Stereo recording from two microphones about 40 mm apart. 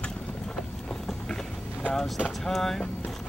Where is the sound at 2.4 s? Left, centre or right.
Centre.